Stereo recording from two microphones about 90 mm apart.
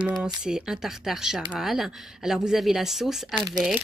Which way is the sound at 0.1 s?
5° right (ahead or behind).